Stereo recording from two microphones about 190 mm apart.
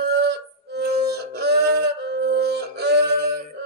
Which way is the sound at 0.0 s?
60° right (ahead or behind).